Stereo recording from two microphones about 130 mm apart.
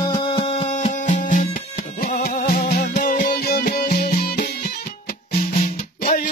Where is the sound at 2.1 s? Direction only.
90° left.